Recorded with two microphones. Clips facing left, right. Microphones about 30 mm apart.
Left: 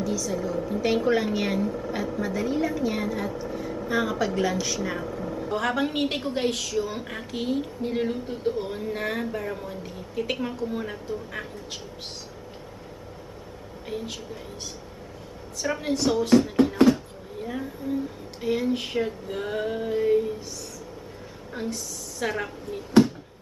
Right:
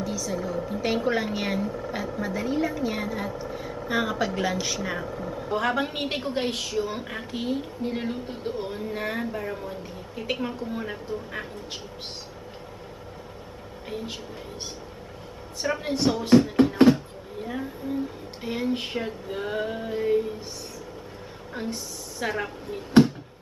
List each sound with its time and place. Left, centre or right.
0.0 s speech: centre
7.3 s speech: centre
15.6 s speech: centre
16.7 s a sound: right
17.4 s a sound: centre
18.4 s speech: centre
21.6 s speech: centre